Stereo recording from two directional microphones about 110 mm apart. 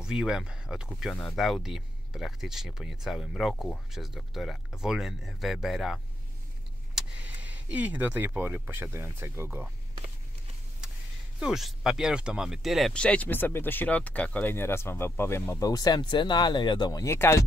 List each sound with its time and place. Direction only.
0.0 s speech: 5° right (ahead or behind)
7.2 s speech: 15° right (ahead or behind)
11.3 s speech: 5° right (ahead or behind)
12.9 s speech: 10° left (ahead or behind)
15.6 s speech: 35° left (ahead or behind)
17.0 s speech: 25° left (ahead or behind)